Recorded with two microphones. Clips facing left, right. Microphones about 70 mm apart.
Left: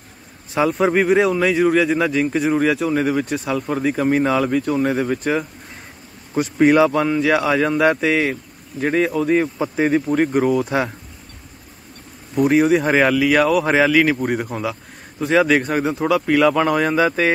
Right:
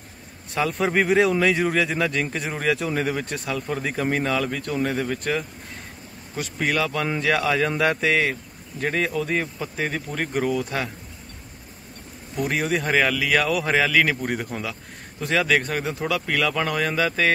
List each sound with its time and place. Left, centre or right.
0.6 s a man's voice: centre
6.4 s speech: left
7.2 s a man's voice: centre
12.4 s a man's voice: centre
13.2 s a man's voice: centre